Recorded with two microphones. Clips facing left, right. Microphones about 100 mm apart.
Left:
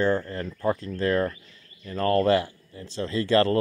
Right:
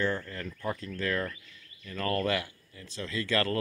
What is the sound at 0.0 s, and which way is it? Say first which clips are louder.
Speech: left 7 dB; 35° left (ahead or behind).